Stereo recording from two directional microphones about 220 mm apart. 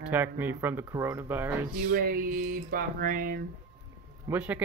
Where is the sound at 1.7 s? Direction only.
40° right (ahead or behind).